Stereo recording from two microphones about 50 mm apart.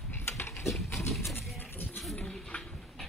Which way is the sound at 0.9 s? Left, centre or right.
Left.